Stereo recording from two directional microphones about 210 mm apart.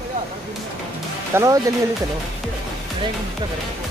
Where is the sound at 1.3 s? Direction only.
15° right (ahead or behind).